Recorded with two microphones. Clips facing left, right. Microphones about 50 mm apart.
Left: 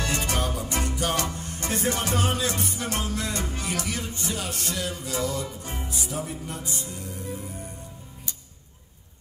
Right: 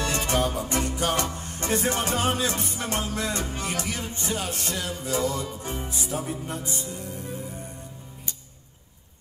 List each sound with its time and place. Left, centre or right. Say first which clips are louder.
0.0 s music: right 2 dB; right